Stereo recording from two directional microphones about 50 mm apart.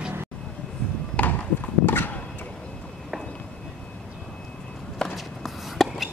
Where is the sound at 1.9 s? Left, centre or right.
Left.